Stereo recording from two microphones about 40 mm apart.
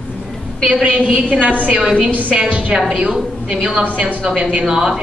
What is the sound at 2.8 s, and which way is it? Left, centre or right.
A woman's voice, centre.